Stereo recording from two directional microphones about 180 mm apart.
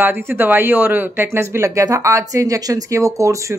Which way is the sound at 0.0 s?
10° right (ahead or behind).